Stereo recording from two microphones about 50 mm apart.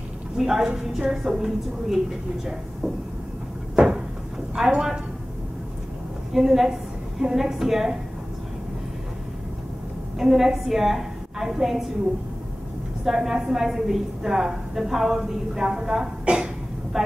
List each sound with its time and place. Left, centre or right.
0.4 s a woman's voice: centre
3.7 s cupboard open or close: centre
4.6 s a woman's voice: centre
6.3 s a woman's voice: centre
10.1 s a woman's voice: centre
13.0 s a woman's voice: centre